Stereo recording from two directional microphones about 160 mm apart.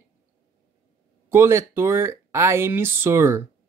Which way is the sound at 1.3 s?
15° right (ahead or behind).